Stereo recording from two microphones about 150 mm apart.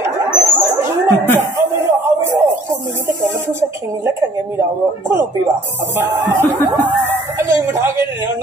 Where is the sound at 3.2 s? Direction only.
15° right (ahead or behind).